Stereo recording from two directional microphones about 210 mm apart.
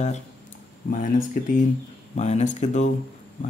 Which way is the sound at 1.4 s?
40° left (ahead or behind).